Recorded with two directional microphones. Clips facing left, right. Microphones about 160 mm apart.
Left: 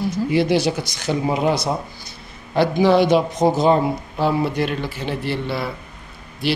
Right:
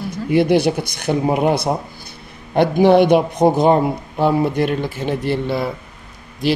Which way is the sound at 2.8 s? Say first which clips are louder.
Right 4 dB; 55° right (ahead or behind).